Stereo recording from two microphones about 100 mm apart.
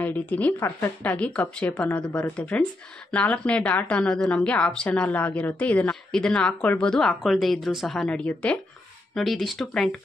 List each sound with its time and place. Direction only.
0.0 s a woman's voice: 15° left (ahead or behind)
9.1 s speech: centre (ahead or behind)